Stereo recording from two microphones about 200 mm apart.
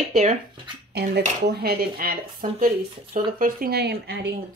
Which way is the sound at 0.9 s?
55° right (ahead or behind).